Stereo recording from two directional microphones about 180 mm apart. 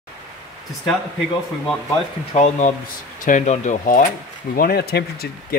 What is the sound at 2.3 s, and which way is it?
Speech, 40° left (ahead or behind).